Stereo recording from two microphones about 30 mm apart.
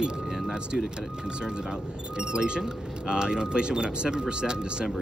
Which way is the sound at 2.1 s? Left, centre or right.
Right.